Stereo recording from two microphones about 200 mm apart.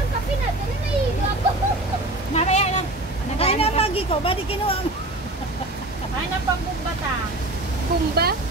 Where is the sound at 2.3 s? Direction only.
35° left (ahead or behind).